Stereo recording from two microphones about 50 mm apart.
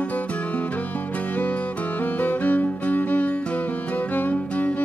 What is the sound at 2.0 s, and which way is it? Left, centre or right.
Music, left.